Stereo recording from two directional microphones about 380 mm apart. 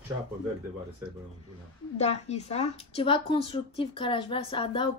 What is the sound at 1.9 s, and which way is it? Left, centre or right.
A woman's voice, centre.